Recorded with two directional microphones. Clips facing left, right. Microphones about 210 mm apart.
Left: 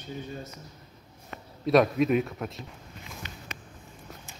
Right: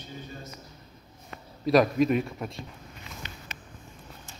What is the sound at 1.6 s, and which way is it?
A man's voice, centre (ahead or behind).